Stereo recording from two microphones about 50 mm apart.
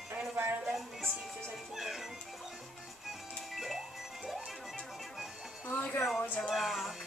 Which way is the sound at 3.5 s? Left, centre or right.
Centre.